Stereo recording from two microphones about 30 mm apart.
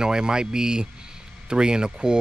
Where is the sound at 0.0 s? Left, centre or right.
Right.